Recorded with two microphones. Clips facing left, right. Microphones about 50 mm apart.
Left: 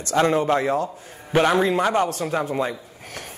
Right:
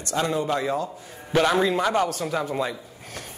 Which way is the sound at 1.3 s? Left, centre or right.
Left.